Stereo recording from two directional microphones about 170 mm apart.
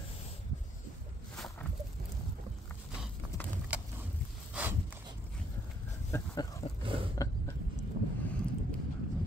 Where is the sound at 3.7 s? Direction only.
10° right (ahead or behind).